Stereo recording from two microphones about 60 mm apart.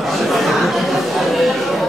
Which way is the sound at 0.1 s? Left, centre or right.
Centre.